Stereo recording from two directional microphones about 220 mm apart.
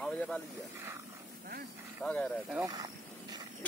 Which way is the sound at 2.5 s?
15° right (ahead or behind).